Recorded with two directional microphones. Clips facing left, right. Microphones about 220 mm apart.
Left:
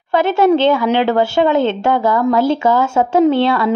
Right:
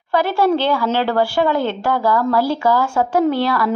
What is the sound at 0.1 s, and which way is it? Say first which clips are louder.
A woman's voice: left 4 dB; 25° left (ahead or behind).